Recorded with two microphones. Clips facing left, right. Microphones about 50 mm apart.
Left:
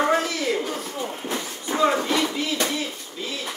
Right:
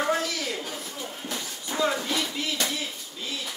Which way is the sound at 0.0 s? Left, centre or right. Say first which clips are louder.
Left 5 dB; left.